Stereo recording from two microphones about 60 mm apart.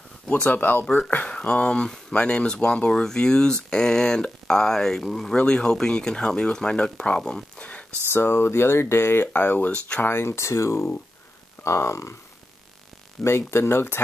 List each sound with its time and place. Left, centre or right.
0.3 s speech: left
0.8 s speech: centre
5.3 s speech: centre
8.1 s speech: left
10.0 s speech: left
13.2 s speech: left